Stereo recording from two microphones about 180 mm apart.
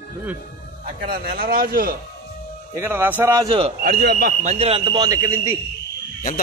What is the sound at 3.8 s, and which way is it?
Speech, 60° right (ahead or behind).